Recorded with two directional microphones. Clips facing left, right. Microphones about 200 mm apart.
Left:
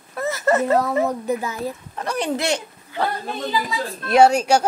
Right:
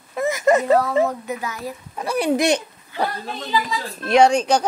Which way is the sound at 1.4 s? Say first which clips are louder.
Left 3 dB; 25° left (ahead or behind).